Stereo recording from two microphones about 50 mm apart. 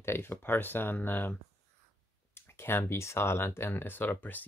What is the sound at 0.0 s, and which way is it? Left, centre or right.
Speech, left.